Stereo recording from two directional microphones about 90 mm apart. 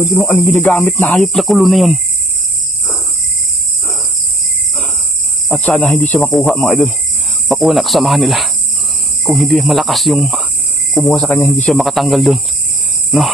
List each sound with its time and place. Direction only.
0.2 s speech: 25° left (ahead or behind)
1.1 s speech: centre (ahead or behind)
5.5 s speech: 20° left (ahead or behind)
5.8 s speech: centre (ahead or behind)
11.3 s speech: 15° left (ahead or behind)
11.7 s speech: centre (ahead or behind)